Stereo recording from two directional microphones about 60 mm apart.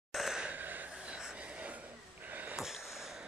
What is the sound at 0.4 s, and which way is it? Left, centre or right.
Gasp, right.